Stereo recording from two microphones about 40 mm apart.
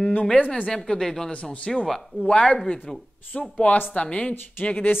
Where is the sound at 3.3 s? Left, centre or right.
Left.